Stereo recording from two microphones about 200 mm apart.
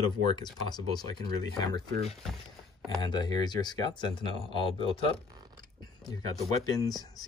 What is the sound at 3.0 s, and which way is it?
Speech, 20° left (ahead or behind).